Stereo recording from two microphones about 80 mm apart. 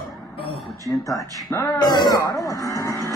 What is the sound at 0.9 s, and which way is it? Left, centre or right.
Speech, left.